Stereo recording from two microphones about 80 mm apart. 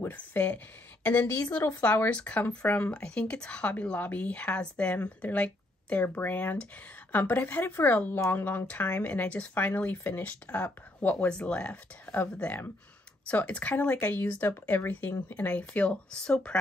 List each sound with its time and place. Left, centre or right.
0.1 s a woman's voice: centre
1.8 s a woman's voice: centre